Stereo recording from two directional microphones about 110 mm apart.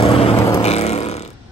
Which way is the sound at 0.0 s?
60° left (ahead or behind).